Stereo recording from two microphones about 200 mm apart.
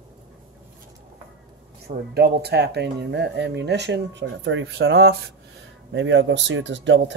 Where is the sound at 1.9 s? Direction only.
55° right (ahead or behind).